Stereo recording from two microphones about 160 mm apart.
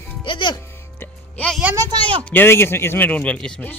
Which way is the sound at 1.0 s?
10° left (ahead or behind).